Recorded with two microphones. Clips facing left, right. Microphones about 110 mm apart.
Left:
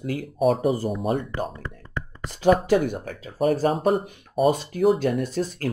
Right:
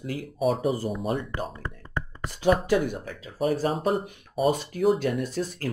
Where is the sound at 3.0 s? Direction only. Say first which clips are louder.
Left 4 dB; 50° left (ahead or behind).